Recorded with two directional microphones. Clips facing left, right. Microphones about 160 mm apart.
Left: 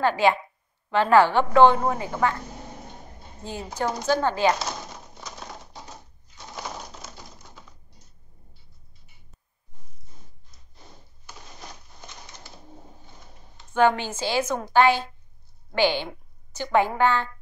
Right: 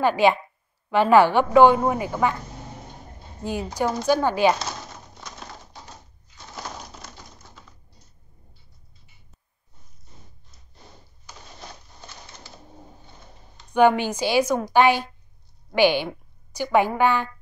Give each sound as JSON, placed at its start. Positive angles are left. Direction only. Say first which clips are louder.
{"t": 0.0, "sound": "a woman's voice", "louder": "right 2 dB", "side_deg": -15}
{"t": 3.4, "sound": "a woman's voice", "louder": "right 3 dB", "side_deg": -15}
{"t": 6.5, "sound": "crushing", "louder": "left 1 dB", "side_deg": 5}
{"t": 13.7, "sound": "a woman's voice", "louder": "right 3 dB", "side_deg": -15}